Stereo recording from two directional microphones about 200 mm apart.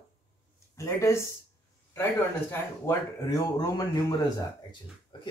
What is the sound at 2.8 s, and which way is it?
Speech, 20° left (ahead or behind).